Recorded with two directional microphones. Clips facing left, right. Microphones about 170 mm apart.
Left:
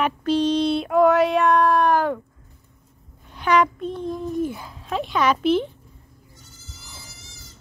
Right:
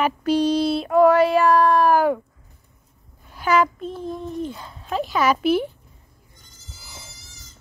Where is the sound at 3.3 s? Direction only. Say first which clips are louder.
Even; 5° right (ahead or behind).